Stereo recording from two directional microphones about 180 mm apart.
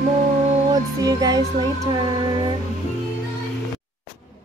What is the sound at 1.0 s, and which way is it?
Music, 20° right (ahead or behind).